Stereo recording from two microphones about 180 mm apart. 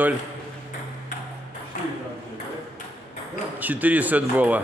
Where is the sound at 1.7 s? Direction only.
45° left (ahead or behind).